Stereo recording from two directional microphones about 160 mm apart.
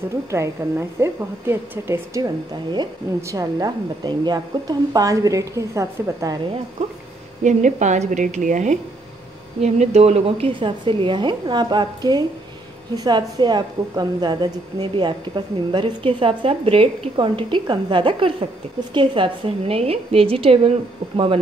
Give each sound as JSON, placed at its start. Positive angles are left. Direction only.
{"t": 0.3, "sound": "a woman's voice", "side_deg": -15}
{"t": 7.4, "sound": "a woman's voice", "side_deg": -50}